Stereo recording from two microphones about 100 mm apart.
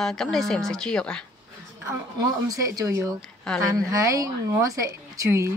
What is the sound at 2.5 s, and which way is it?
A woman's voice, 35° right (ahead or behind).